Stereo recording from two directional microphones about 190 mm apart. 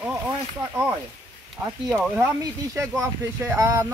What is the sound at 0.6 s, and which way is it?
Speech, 10° right (ahead or behind).